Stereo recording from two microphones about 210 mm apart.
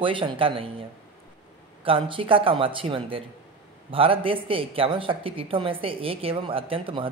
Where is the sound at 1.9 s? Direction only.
25° right (ahead or behind).